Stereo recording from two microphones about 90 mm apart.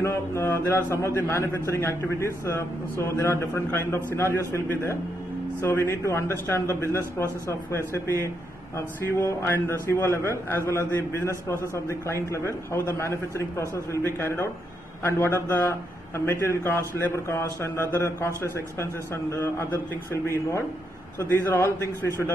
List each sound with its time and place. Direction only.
0.0 s a man's voice: 30° left (ahead or behind)
5.6 s speech: 25° left (ahead or behind)
9.5 s a man's voice: 30° left (ahead or behind)
21.2 s speech: 25° left (ahead or behind)